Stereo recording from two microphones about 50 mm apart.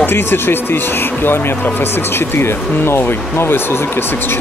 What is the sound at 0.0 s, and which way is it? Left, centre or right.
Speech, left.